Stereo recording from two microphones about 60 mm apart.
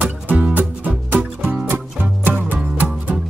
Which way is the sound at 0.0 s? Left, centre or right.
Right.